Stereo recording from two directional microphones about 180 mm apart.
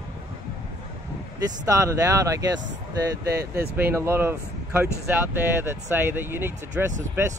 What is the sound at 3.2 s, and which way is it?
Speech, 65° right (ahead or behind).